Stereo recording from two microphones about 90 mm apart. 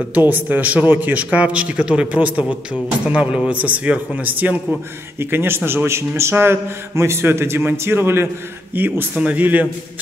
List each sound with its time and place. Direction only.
0.1 s a man's voice: 20° right (ahead or behind)